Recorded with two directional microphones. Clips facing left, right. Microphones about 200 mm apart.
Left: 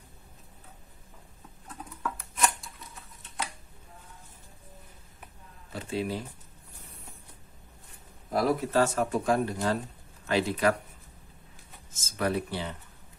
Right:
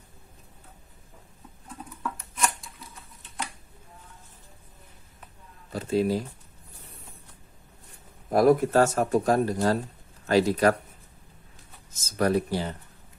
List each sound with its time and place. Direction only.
2.0 s a sound: centre (ahead or behind)
5.7 s speech: 40° right (ahead or behind)
8.3 s speech: 50° right (ahead or behind)
11.9 s speech: 40° right (ahead or behind)